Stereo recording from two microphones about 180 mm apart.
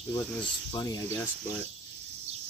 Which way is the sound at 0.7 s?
20° left (ahead or behind).